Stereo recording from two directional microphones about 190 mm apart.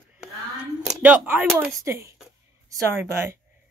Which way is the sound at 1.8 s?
15° right (ahead or behind).